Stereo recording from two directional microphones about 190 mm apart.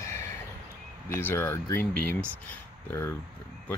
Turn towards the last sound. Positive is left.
turn(degrees=15)  # may be behind; listen again after turning